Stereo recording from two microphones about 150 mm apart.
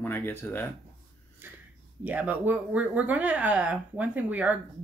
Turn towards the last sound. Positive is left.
turn(degrees=-10)  # may be behind; listen again after turning